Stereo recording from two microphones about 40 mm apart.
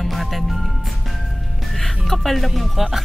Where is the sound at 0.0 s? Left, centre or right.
Centre.